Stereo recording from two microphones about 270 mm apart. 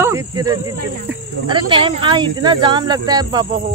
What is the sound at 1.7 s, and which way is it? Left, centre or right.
Speech, centre.